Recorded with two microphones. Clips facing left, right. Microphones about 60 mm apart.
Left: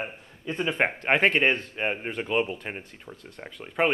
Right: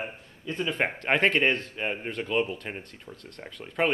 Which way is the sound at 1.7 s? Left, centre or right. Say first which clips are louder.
Left 2 dB; left.